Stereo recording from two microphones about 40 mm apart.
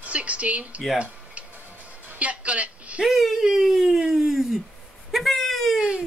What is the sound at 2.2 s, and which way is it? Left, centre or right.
Speech, right.